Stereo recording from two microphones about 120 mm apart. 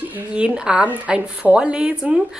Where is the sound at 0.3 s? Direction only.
10° right (ahead or behind).